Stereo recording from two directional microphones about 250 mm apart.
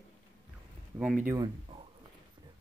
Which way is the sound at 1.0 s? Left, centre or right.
Centre.